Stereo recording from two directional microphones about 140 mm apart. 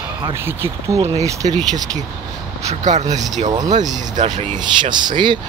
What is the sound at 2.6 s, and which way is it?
Speech, 55° right (ahead or behind).